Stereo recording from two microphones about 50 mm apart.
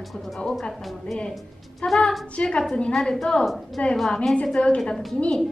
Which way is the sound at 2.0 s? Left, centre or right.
Centre.